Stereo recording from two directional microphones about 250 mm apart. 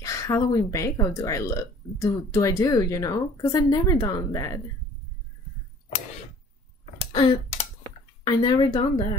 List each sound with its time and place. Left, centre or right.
0.0 s speech: centre
7.0 s a sound: left
8.2 s speech: centre